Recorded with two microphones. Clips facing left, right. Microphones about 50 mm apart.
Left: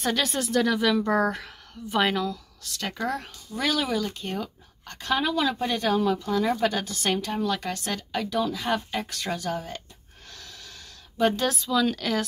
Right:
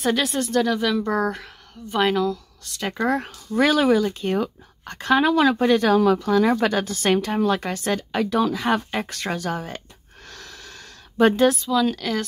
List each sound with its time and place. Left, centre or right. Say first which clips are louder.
0.0 s a woman's voice: right 4 dB; centre
2.8 s speech: right 6 dB; centre
3.5 s speech: right 9 dB; right
8.2 s speech: right 5 dB; right
10.2 s a sound: right 5 dB; right
11.4 s a woman's voice: right 5 dB; centre